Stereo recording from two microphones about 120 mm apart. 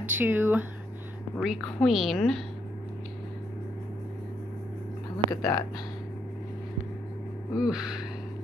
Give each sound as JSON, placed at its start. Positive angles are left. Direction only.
{"t": 0.0, "sound": "speech", "side_deg": -15}
{"t": 1.4, "sound": "a woman's voice", "side_deg": 0}
{"t": 5.3, "sound": "speech", "side_deg": 30}
{"t": 7.5, "sound": "a woman's voice", "side_deg": -5}